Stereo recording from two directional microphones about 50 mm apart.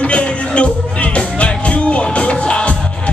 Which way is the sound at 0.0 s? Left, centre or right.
Left.